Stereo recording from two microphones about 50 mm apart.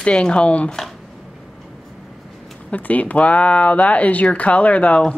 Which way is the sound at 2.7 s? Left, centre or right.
Left.